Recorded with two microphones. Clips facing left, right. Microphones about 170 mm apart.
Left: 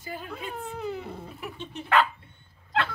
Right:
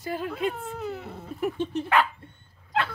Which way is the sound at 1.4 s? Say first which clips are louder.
Right 14 dB; 45° right (ahead or behind).